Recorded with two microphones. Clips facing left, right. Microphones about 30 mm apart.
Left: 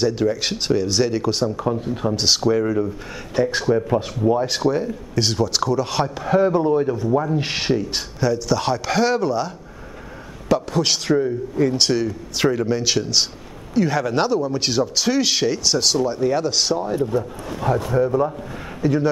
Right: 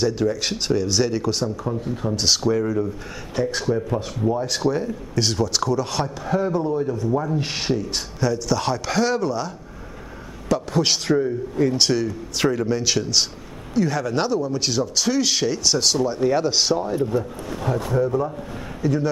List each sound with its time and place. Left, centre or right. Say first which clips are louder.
0.0 s speech: left 2 dB; centre
1.6 s speech: left 4 dB; left
7.1 s speech: left 3 dB; centre
10.7 s speech: left 1 dB; centre
16.9 s a man's voice: left 1 dB; centre